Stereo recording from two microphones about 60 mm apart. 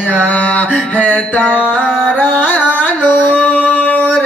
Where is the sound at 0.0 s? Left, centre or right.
Left.